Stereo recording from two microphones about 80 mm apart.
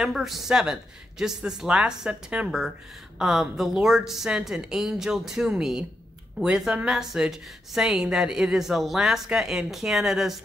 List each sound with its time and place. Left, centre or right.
0.0 s a woman's voice: centre